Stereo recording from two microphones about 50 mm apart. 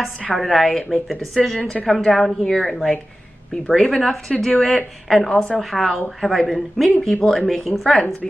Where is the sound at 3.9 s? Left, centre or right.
Centre.